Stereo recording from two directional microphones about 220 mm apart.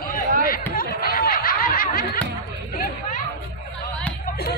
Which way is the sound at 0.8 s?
40° left (ahead or behind).